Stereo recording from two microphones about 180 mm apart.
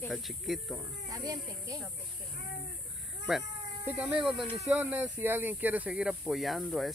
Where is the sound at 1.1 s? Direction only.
20° right (ahead or behind).